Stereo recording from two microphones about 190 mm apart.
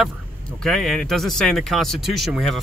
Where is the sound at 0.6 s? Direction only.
Centre (ahead or behind).